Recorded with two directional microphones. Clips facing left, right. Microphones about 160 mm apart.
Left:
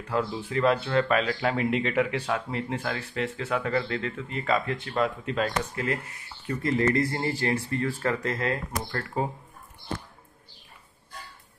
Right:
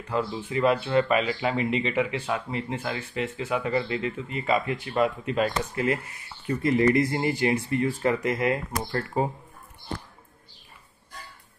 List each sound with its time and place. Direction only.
0.1 s speech: centre (ahead or behind)